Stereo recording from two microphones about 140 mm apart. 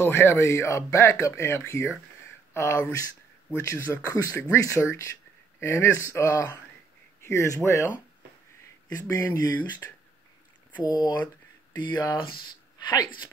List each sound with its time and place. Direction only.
0.0 s a man's voice: 20° left (ahead or behind)
8.9 s speech: 25° left (ahead or behind)
11.0 s speech: 30° left (ahead or behind)